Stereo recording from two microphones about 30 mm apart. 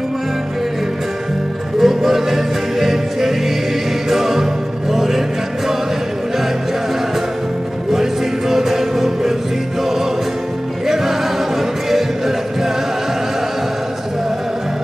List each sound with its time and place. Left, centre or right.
1.8 s music: centre
4.9 s a sound: centre
7.9 s music: centre
10.9 s music: centre